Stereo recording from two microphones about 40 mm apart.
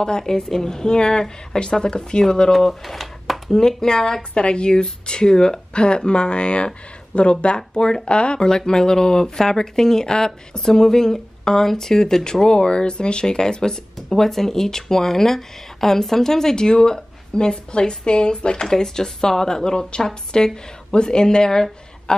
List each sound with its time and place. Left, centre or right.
0.0 s a woman's voice: centre
2.6 s speech: centre
3.4 s speech: centre
4.3 s a woman's voice: left